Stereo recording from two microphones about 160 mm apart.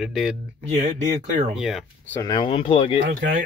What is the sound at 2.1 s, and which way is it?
Speech, 20° left (ahead or behind).